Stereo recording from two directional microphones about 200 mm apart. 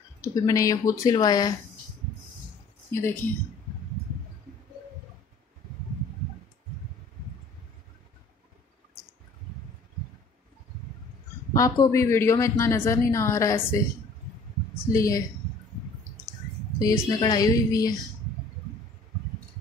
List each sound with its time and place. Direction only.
0.2 s speech: 15° left (ahead or behind)
2.9 s speech: 15° left (ahead or behind)
11.5 s speech: 15° left (ahead or behind)
14.9 s speech: 15° left (ahead or behind)
16.7 s speech: 20° left (ahead or behind)